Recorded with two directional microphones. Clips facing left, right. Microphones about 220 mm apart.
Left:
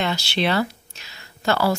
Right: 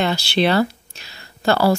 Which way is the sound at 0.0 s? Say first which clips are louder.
Right 5 dB; 35° right (ahead or behind).